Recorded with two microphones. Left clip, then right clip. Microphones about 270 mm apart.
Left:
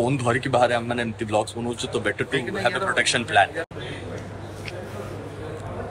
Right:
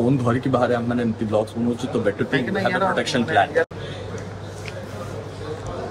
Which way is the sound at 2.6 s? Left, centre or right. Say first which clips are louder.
Left 1 dB; centre.